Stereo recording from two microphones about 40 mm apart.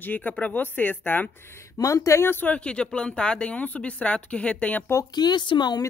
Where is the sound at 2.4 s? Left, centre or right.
Left.